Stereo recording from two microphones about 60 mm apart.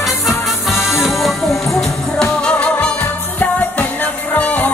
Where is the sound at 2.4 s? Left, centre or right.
Centre.